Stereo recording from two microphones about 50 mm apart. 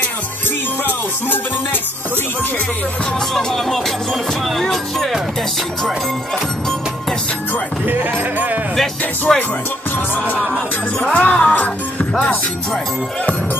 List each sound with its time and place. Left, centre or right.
0.8 s music: left
3.3 s music: centre
7.8 s sheep: right
9.3 s music: centre
9.9 s music: left